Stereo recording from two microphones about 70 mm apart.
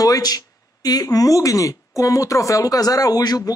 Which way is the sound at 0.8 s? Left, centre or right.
Left.